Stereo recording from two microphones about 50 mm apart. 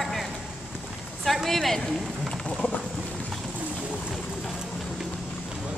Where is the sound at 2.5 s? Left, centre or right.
Left.